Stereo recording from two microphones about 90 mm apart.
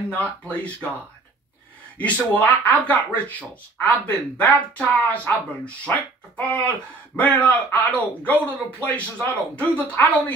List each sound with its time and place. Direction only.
0.1 s speech: 15° left (ahead or behind)
2.3 s speech: 20° left (ahead or behind)